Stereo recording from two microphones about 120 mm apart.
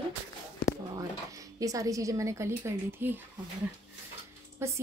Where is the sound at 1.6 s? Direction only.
30° right (ahead or behind).